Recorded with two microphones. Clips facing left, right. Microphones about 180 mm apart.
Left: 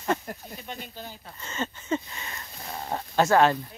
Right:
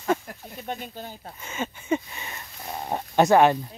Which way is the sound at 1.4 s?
10° right (ahead or behind).